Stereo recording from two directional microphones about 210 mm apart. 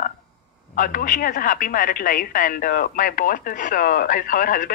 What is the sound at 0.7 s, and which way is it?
Speech, 40° left (ahead or behind).